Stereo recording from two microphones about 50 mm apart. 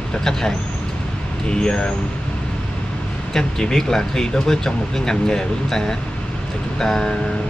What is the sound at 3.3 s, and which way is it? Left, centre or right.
Speech, centre.